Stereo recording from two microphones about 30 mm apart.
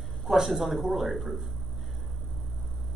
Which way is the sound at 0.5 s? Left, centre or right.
Centre.